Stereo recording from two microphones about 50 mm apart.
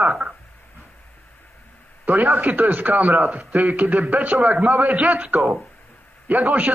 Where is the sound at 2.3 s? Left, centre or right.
Right.